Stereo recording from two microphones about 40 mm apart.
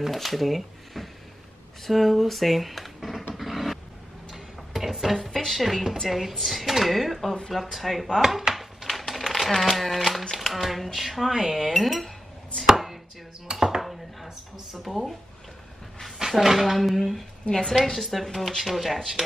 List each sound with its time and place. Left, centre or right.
0.0 s speech: centre
3.3 s dog: centre
4.3 s a sound: centre
5.1 s speech: centre
8.2 s a sound: centre
10.3 s speech: centre
12.6 s chopping: centre
13.6 s dishes: centre
16.2 s speech: centre
17.5 s a woman's voice: centre
17.7 s speech: centre